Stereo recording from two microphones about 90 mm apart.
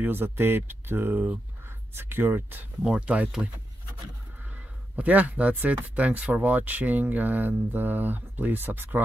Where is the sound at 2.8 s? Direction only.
10° right (ahead or behind).